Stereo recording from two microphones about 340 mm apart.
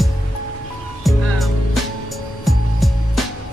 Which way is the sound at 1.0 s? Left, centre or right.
Centre.